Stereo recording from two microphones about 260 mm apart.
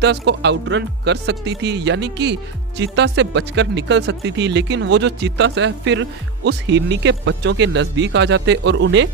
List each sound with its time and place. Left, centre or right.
0.0 s speech: right